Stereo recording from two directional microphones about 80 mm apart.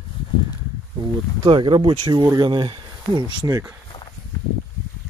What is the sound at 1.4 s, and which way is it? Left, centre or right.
Speech, right.